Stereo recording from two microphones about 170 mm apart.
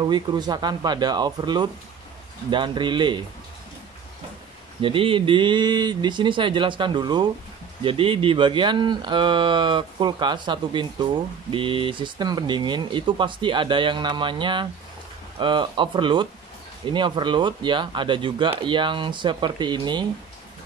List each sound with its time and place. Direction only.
0.0 s speech: 25° right (ahead or behind)
4.8 s speech: 30° right (ahead or behind)